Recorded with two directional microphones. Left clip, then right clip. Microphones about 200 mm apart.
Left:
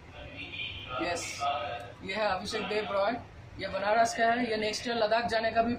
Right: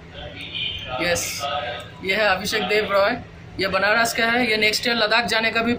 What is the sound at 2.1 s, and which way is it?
Speech, 15° right (ahead or behind).